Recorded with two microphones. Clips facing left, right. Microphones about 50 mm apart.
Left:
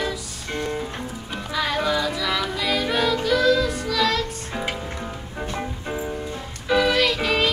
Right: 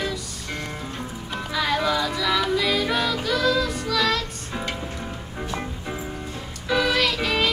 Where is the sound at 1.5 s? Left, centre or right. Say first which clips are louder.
Even; centre.